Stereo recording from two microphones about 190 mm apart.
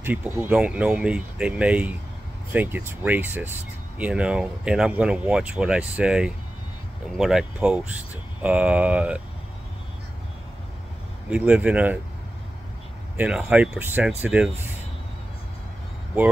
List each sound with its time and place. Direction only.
0.0 s speech: 10° right (ahead or behind)
11.2 s speech: 5° right (ahead or behind)
13.2 s speech: 5° right (ahead or behind)